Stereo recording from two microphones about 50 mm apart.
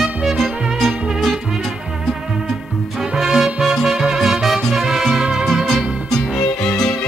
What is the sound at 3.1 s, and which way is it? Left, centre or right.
Music, centre.